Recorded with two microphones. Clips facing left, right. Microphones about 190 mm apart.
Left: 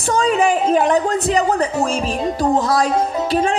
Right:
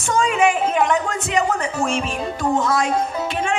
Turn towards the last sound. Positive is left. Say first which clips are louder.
# left 5 dB
turn(degrees=35)  # may be behind; listen again after turning